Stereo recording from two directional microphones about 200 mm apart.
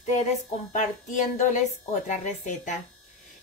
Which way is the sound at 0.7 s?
40° left (ahead or behind).